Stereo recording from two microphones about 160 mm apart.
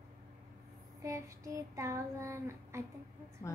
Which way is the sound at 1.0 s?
20° right (ahead or behind).